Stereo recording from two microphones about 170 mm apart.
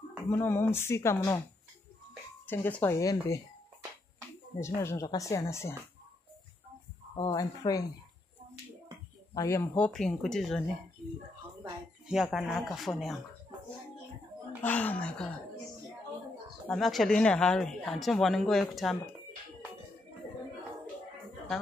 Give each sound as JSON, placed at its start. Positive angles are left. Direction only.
{"t": 0.3, "sound": "speech", "side_deg": 15}
{"t": 2.4, "sound": "speech", "side_deg": 10}
{"t": 4.6, "sound": "speech", "side_deg": 15}
{"t": 7.2, "sound": "speech", "side_deg": 20}
{"t": 9.3, "sound": "speech", "side_deg": 20}
{"t": 9.8, "sound": "speech", "side_deg": 0}
{"t": 11.6, "sound": "a sound", "side_deg": -5}
{"t": 12.6, "sound": "speech", "side_deg": 0}
{"t": 14.6, "sound": "speech", "side_deg": 10}
{"t": 16.6, "sound": "speech", "side_deg": 5}